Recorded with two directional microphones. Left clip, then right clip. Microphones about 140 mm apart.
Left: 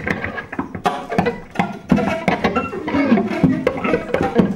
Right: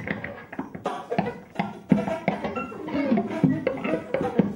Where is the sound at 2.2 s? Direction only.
30° left (ahead or behind).